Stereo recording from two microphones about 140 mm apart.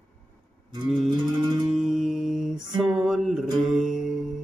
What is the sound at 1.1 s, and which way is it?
Music, 35° right (ahead or behind).